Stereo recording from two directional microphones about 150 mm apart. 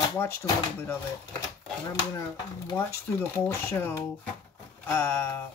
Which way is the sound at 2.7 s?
15° left (ahead or behind).